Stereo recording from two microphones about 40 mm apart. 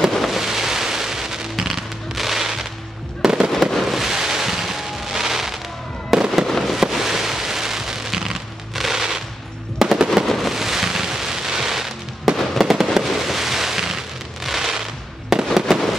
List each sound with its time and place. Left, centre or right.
0.3 s music: centre
3.3 s fireworks: centre
3.7 s fireworks: centre
6.4 s fireworks: centre
6.8 s fireworks: centre
8.7 s music: centre
9.8 s machine gun: centre
10.2 s a sound: centre
10.5 s fireworks: centre
14.4 s a sound: centre
15.3 s fireworks: centre